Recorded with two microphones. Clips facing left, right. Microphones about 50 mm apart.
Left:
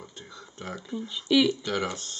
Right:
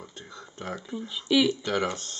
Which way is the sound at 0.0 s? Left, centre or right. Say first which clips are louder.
Right 1 dB; centre.